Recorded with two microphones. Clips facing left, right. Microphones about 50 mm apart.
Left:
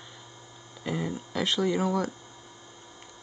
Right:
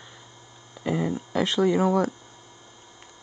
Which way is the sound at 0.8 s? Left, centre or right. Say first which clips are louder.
Right 5 dB; right.